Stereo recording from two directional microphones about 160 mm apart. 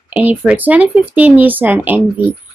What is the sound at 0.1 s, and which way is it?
Speech, 10° right (ahead or behind).